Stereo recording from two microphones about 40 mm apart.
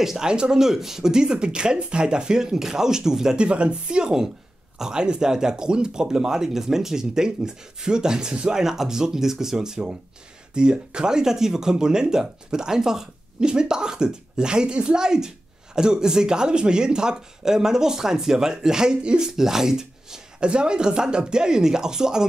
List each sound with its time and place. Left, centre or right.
0.0 s speech: centre
0.3 s speech: centre
3.3 s speech: right